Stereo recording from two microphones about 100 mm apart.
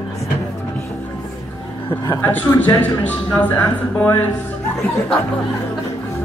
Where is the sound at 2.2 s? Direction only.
15° left (ahead or behind).